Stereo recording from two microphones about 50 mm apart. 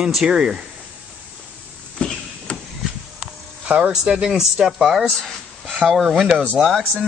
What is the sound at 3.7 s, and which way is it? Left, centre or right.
Speech, right.